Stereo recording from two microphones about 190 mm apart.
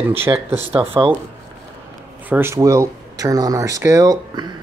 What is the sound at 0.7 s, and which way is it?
Speech, 30° right (ahead or behind).